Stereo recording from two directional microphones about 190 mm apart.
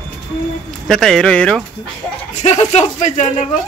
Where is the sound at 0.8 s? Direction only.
5° left (ahead or behind).